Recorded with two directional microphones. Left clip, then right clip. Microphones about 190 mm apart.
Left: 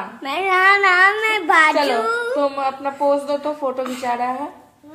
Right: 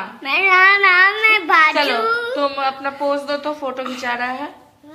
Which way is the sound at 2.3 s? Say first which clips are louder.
Even; 15° left (ahead or behind).